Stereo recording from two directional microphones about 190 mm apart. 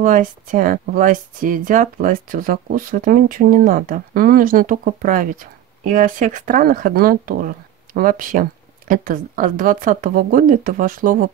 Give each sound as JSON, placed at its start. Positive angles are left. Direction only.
{"t": 0.0, "sound": "speech", "side_deg": -45}